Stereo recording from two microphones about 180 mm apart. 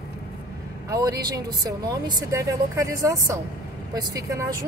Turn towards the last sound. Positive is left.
turn(degrees=-20)  # may be behind; listen again after turning